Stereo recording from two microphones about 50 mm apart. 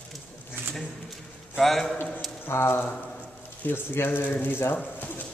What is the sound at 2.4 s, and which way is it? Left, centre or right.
Speech, left.